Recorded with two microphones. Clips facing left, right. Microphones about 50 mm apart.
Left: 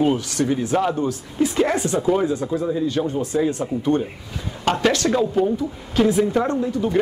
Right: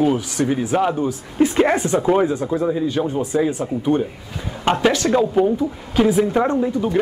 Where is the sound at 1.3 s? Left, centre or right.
Right; by 6.4 s centre.